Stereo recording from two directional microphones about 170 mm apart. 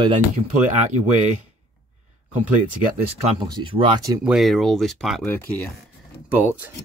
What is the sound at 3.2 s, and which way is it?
Speech, 35° right (ahead or behind).